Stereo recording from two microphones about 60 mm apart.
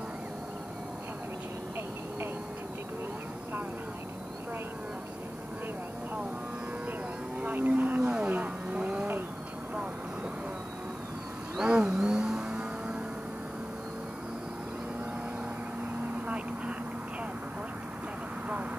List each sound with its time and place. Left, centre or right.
7.3 s vehicle: right
11.6 s vehicle: centre